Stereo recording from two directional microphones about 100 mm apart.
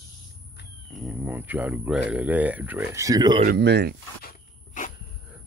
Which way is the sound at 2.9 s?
35° right (ahead or behind).